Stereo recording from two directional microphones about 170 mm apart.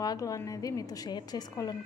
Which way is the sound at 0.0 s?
20° left (ahead or behind).